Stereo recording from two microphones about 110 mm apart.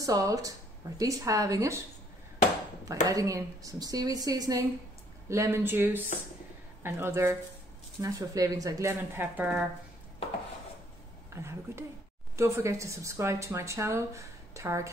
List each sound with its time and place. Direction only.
0.0 s speech: 30° right (ahead or behind)
3.1 s speech: 30° right (ahead or behind)
5.3 s speech: 25° right (ahead or behind)
11.3 s speech: 25° right (ahead or behind)